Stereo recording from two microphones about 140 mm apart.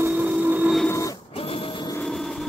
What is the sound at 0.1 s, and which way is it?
Vehicle, 10° right (ahead or behind).